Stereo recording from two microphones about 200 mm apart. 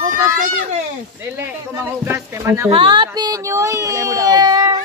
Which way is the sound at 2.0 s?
10° right (ahead or behind).